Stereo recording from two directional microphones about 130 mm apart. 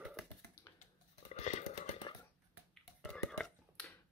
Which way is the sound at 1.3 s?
65° left (ahead or behind).